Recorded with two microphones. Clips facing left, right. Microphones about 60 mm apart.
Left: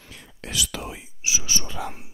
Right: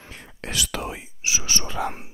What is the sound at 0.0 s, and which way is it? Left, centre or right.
Whispering, right.